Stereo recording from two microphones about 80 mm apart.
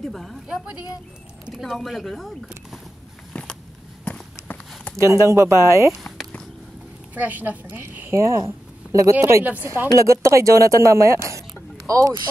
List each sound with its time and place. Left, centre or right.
0.1 s speech: centre
1.5 s speech: centre
3.3 s a sound: centre
4.0 s walk: centre
4.9 s speech: right
5.9 s a sound: centre
7.2 s a woman's voice: right
8.2 s speech: right
9.1 s a woman's voice: right
9.9 s speech: right